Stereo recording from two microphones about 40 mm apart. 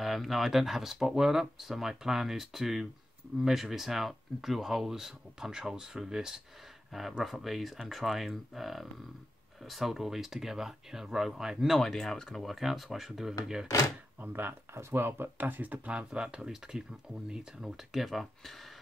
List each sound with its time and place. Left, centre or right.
0.0 s a sound: centre
0.5 s speech: centre
6.9 s speech: centre
11.8 s speech: centre
12.4 s speech: centre
14.3 s speech: right
15.4 s speech: right
16.1 s speech: centre
18.0 s speech: centre